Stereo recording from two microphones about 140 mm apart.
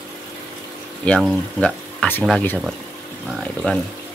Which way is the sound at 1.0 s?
10° left (ahead or behind).